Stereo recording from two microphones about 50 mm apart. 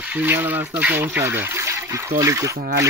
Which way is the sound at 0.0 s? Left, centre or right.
Right.